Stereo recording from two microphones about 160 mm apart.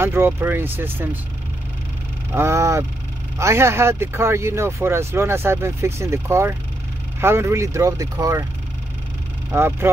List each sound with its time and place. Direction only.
0.0 s speech: 15° right (ahead or behind)
2.3 s speech: 15° right (ahead or behind)
9.5 s speech: 15° right (ahead or behind)